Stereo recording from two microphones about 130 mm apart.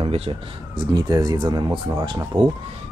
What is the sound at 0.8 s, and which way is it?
Speech, 30° right (ahead or behind).